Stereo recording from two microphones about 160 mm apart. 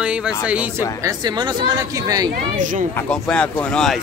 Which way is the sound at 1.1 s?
25° right (ahead or behind).